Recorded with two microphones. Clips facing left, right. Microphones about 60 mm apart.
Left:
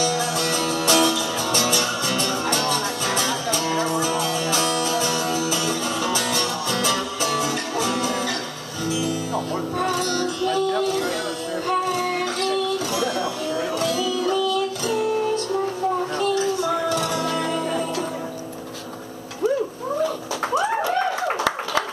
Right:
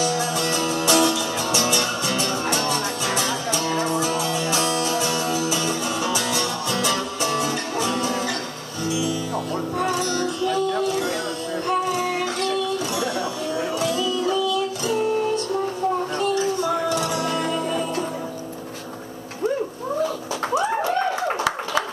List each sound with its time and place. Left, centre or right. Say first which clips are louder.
0.5 s music: even; right
0.8 s music: even; centre
4.3 s music: even; centre
10.9 s music: even; left
16.7 s music: even; centre